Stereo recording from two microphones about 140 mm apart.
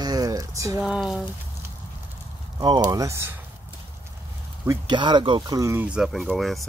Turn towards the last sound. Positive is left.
turn(degrees=0)  # may be behind; listen again after turning